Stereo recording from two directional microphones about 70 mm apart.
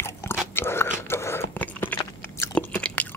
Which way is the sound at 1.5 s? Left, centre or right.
Left.